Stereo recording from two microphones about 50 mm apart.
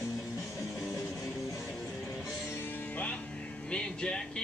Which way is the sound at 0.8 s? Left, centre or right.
Left.